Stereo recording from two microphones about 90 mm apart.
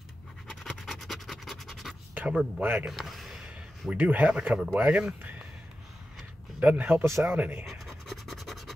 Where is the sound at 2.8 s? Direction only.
Centre (ahead or behind).